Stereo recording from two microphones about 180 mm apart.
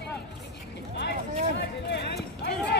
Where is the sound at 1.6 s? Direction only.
65° left (ahead or behind).